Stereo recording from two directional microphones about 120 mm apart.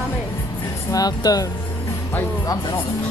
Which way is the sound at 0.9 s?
30° left (ahead or behind).